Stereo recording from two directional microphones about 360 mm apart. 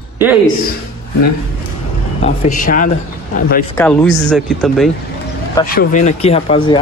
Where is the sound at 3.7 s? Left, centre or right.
Centre.